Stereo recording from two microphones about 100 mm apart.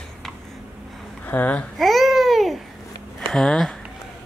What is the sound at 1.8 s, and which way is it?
Babbling, centre (ahead or behind).